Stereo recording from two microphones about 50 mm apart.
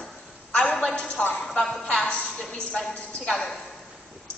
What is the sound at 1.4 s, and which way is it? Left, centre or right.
Speech, centre.